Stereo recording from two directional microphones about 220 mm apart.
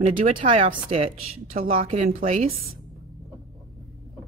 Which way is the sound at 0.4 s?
30° right (ahead or behind).